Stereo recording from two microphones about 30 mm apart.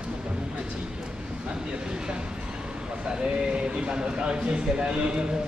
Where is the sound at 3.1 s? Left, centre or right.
Right.